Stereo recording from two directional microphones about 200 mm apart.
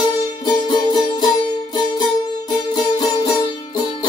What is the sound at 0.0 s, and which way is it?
Music, 20° left (ahead or behind).